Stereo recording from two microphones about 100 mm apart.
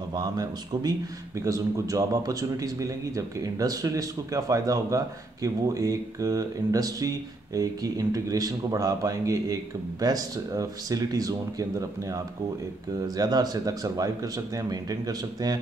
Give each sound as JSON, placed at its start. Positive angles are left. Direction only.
{"t": 0.1, "sound": "a man's voice", "side_deg": -40}
{"t": 13.2, "sound": "a man's voice", "side_deg": -40}